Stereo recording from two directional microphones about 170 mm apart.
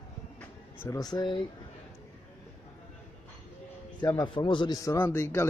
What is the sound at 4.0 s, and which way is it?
Speech, 25° left (ahead or behind).